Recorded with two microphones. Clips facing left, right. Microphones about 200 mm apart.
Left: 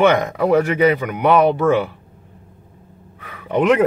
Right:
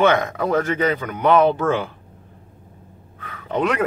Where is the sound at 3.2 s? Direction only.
15° left (ahead or behind).